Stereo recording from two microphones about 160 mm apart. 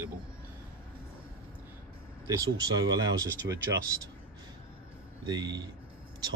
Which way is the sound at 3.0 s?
20° right (ahead or behind).